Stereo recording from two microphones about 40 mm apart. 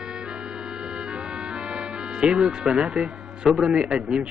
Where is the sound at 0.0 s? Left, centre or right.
Right.